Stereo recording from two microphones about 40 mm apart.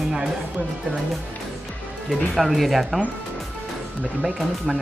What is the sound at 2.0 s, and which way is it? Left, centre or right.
Speech, centre.